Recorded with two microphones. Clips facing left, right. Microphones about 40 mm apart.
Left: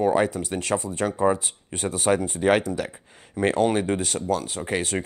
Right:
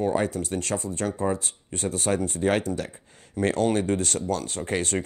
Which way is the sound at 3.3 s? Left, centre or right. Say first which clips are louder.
Left 2 dB; centre.